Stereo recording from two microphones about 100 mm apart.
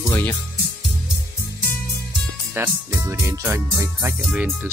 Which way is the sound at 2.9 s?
30° right (ahead or behind).